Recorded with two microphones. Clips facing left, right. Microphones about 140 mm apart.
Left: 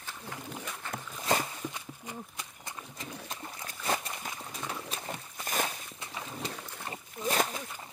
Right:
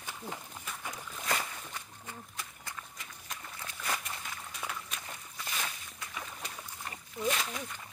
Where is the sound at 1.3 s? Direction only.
25° left (ahead or behind).